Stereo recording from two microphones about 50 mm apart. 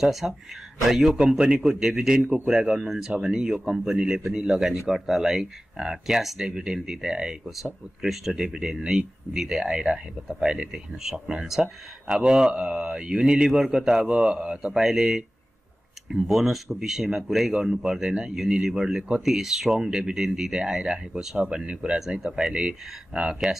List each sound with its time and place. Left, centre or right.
0.0 s speech: centre; by 14.7 s right
14.7 s speech: centre